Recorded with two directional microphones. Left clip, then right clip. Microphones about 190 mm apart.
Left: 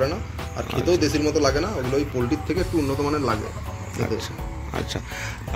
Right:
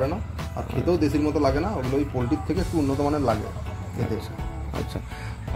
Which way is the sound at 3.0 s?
60° right (ahead or behind).